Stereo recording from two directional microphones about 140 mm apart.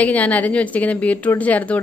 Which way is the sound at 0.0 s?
10° left (ahead or behind).